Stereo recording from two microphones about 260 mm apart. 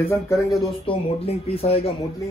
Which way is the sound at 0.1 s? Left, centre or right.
Centre.